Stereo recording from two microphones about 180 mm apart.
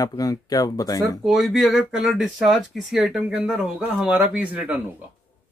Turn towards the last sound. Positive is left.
turn(degrees=-10)  # may be behind; listen again after turning